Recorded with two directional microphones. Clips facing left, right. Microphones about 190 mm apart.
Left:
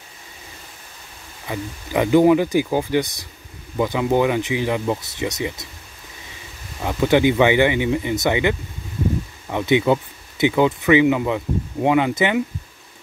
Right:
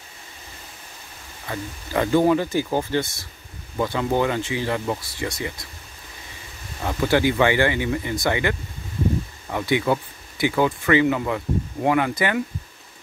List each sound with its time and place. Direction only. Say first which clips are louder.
1.5 s speech: left 3 dB; 15° left (ahead or behind)
6.8 s speech: left 4 dB; 15° left (ahead or behind)